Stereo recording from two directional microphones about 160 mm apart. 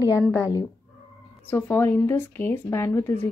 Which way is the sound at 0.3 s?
20° left (ahead or behind).